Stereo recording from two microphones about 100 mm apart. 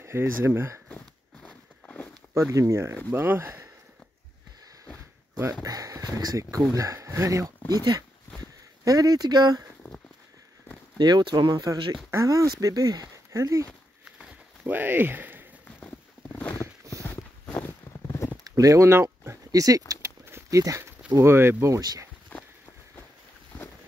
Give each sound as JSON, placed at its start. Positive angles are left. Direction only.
{"t": 0.0, "sound": "speech", "side_deg": -25}
{"t": 0.8, "sound": "walk", "side_deg": 10}
{"t": 2.3, "sound": "speech", "side_deg": -30}
{"t": 5.4, "sound": "speech", "side_deg": -40}
{"t": 7.7, "sound": "speech", "side_deg": -45}
{"t": 11.0, "sound": "speech", "side_deg": -45}
{"t": 14.0, "sound": "a sound", "side_deg": -5}
{"t": 14.7, "sound": "speech", "side_deg": -20}
{"t": 15.6, "sound": "a sound", "side_deg": 15}
{"t": 17.0, "sound": "walk", "side_deg": 25}
{"t": 18.5, "sound": "a sound", "side_deg": -30}
{"t": 21.2, "sound": "speech", "side_deg": -25}